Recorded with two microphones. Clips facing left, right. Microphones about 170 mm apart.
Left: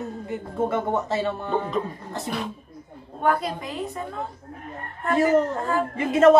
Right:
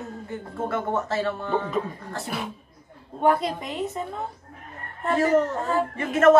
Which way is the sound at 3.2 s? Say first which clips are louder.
Right 2 dB; 20° right (ahead or behind).